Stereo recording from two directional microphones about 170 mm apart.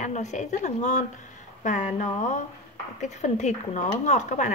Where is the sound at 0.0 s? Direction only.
45° left (ahead or behind).